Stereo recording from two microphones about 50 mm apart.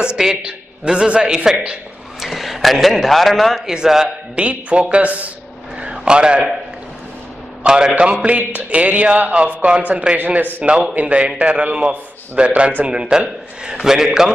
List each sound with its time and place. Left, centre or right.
0.0 s a man's voice: centre
2.1 s a man's voice: centre
3.6 s a man's voice: centre
4.4 s a man's voice: right
5.8 s a sound: right
7.6 s a man's voice: centre
8.4 s speech: right
10.6 s a man's voice: right; by 14.3 s centre